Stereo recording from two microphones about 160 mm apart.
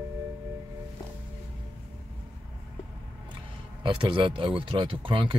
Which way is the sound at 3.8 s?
30° right (ahead or behind).